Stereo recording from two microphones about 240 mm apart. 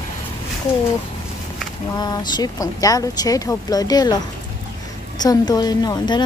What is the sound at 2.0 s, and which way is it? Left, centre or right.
Speech, centre.